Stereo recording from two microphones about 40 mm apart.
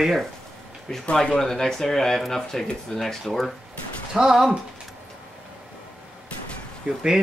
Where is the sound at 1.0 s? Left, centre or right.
Left.